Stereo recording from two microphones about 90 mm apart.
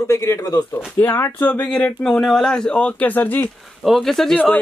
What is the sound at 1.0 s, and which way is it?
Speech, 25° left (ahead or behind).